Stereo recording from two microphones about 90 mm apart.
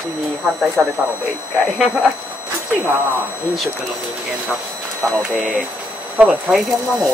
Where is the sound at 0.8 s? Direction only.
20° right (ahead or behind).